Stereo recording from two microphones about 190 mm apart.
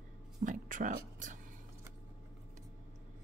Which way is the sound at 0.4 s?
45° right (ahead or behind).